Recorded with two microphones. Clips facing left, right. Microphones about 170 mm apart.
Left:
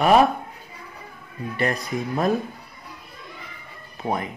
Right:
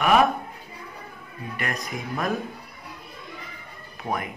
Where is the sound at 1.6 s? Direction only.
30° left (ahead or behind).